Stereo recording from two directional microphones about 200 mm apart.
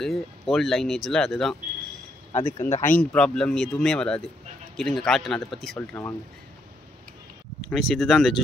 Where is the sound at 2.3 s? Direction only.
30° left (ahead or behind).